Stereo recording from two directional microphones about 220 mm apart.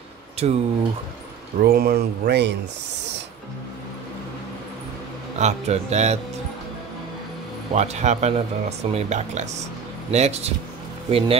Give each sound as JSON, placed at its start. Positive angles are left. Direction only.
{"t": 0.4, "sound": "speech", "side_deg": -30}
{"t": 1.6, "sound": "speech", "side_deg": -45}
{"t": 5.4, "sound": "speech", "side_deg": -30}
{"t": 7.7, "sound": "speech", "side_deg": -30}